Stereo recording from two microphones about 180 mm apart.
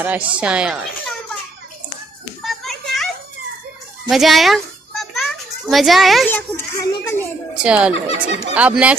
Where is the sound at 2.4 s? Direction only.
Centre (ahead or behind).